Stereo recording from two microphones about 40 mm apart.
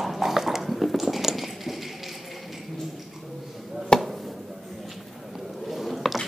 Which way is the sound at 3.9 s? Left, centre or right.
Left.